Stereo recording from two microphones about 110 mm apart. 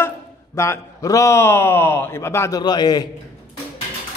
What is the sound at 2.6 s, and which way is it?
Speech, 40° left (ahead or behind).